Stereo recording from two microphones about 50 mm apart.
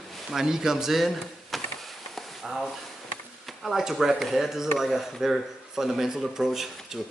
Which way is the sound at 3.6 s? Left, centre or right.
Centre.